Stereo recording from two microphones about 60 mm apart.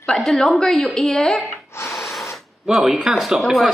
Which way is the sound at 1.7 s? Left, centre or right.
Left.